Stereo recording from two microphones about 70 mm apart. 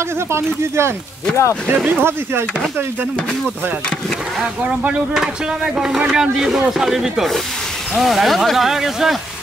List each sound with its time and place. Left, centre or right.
0.3 s speech: right
1.3 s speech: left
1.9 s speech: right
4.8 s speech: centre